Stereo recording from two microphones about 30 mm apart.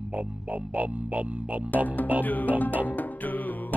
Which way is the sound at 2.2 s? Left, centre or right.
Left.